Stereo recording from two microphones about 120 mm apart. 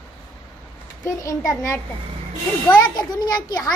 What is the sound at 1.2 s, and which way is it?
Speech, 25° left (ahead or behind).